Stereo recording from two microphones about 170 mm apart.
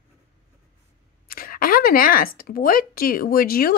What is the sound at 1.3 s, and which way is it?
Speech, 60° left (ahead or behind).